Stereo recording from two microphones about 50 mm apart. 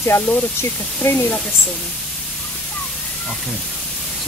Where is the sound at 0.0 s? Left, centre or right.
Left.